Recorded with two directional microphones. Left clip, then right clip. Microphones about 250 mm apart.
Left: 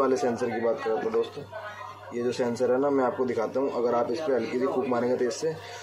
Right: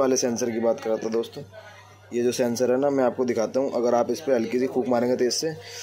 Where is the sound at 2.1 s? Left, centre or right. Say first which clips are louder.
Right 4 dB; right.